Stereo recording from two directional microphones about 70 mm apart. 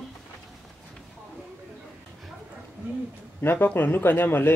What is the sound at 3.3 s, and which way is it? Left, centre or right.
Speech, left.